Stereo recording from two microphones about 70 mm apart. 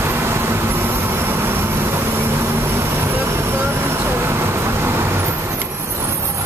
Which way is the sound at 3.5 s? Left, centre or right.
Right.